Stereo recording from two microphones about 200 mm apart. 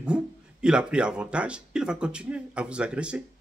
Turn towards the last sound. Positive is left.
turn(degrees=-5)  # may be behind; listen again after turning